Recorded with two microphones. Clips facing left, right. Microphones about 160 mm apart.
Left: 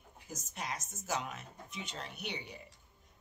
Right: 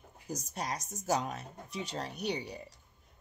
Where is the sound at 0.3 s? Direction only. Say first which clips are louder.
Right 5 dB; 35° right (ahead or behind).